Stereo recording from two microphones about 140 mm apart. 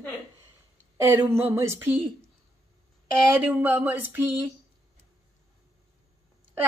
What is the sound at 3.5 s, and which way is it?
Speech, 10° right (ahead or behind).